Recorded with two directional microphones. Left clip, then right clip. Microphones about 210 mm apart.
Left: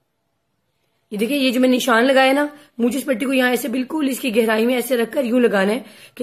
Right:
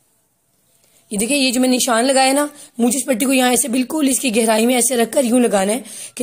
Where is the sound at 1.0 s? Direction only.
20° right (ahead or behind).